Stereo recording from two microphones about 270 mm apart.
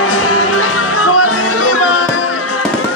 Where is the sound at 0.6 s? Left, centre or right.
Left.